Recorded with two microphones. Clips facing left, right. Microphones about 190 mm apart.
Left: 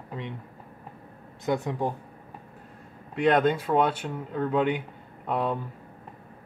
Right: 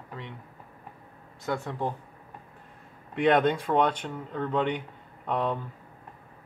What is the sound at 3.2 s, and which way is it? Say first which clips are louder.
Speech: left 1 dB; centre (ahead or behind).